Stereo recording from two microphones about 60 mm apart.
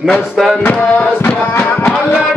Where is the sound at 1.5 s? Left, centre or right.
Left.